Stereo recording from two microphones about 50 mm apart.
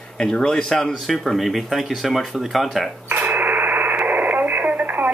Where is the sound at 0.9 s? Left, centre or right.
Centre.